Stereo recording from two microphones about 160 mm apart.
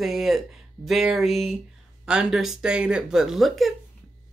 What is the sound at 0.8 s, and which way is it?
Speech, centre (ahead or behind).